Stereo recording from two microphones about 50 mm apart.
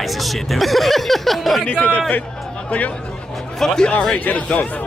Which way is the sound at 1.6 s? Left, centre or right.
Left.